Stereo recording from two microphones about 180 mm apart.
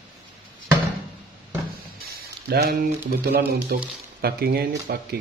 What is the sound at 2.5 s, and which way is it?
Speech, 60° right (ahead or behind).